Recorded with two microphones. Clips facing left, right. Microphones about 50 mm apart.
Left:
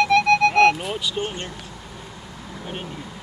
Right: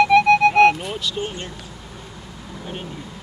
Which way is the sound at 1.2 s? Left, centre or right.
Left.